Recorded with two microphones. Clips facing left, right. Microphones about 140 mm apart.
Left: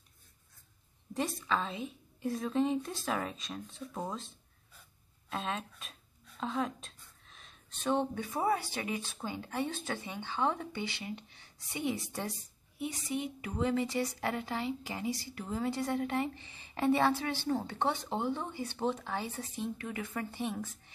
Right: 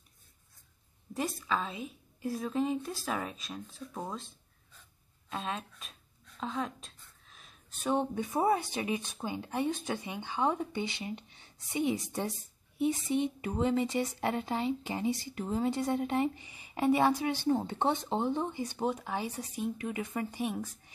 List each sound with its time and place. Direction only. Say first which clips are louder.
1.1 s a woman's voice: even; 5° right (ahead or behind)